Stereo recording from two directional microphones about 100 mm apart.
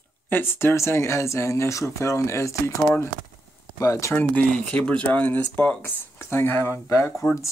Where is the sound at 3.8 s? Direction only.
30° left (ahead or behind).